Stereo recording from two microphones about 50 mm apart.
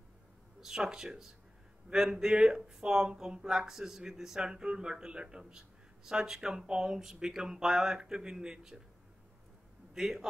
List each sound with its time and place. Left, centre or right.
0.6 s speech: centre
9.9 s speech: centre